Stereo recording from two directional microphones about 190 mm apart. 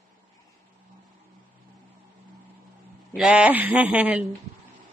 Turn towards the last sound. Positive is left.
turn(degrees=-5)  # may be behind; listen again after turning